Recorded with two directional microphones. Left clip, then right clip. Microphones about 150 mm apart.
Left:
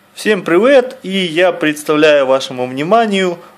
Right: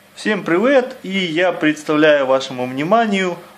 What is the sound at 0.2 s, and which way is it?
Speech, 50° left (ahead or behind).